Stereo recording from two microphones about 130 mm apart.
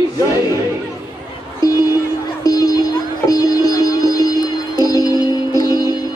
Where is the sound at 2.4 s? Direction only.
30° left (ahead or behind).